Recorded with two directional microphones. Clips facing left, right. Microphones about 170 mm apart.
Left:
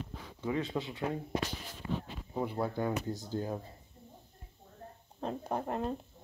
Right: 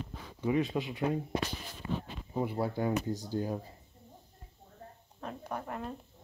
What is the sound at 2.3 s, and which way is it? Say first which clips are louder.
Speech: right 1 dB; 10° right (ahead or behind).